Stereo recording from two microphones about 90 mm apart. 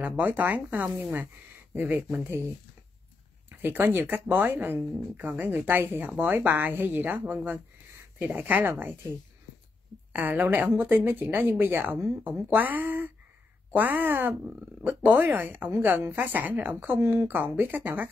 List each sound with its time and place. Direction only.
0.0 s a woman's voice: 20° right (ahead or behind)
10.1 s a woman's voice: 20° right (ahead or behind)